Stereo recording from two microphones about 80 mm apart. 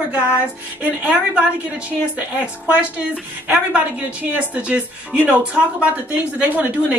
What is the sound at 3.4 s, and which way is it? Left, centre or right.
A woman's voice, right.